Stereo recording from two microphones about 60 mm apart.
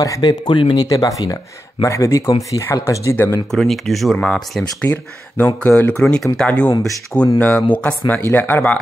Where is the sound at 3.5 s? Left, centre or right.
Centre.